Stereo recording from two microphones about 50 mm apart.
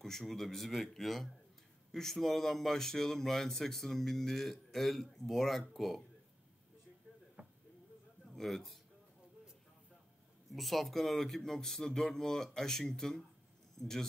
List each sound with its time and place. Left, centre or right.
0.0 s speech: centre
7.4 s a sound: right
8.4 s speech: centre
10.5 s speech: centre